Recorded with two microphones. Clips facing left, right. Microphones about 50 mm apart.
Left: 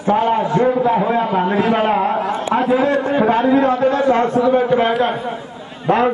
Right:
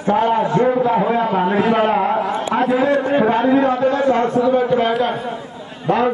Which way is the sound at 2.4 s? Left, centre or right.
Left.